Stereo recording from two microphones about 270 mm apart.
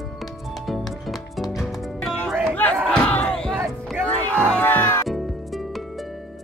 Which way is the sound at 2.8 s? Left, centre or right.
Centre.